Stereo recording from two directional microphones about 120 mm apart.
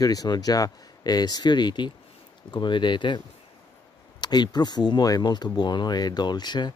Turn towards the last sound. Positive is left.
turn(degrees=35)  # may be behind; listen again after turning